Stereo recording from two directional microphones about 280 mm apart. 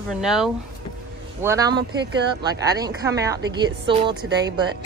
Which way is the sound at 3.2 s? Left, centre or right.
Centre.